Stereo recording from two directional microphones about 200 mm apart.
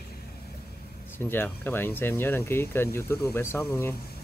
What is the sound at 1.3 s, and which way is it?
Speech, 10° left (ahead or behind).